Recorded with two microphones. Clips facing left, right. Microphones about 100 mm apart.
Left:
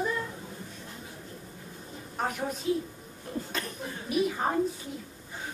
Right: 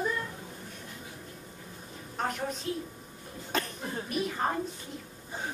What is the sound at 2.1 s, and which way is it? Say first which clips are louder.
Speech: left 1 dB; 5° left (ahead or behind).